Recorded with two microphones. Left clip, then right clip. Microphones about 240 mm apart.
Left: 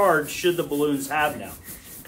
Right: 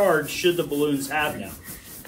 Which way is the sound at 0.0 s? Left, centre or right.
Centre.